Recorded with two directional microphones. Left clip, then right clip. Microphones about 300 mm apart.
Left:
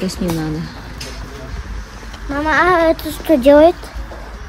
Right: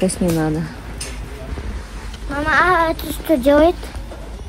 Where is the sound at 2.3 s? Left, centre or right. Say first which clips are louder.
Left 1 dB; left.